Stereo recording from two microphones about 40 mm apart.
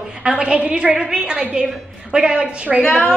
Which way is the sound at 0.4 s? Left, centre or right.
Right.